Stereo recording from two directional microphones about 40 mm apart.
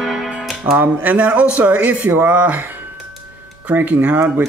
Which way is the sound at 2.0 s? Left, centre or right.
Right.